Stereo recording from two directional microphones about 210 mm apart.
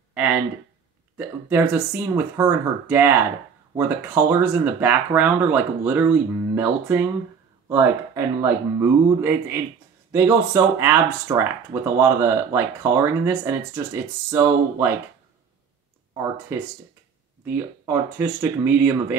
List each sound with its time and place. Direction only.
0.1 s a sound: 5° right (ahead or behind)
1.1 s speech: 10° right (ahead or behind)
17.5 s speech: 10° right (ahead or behind)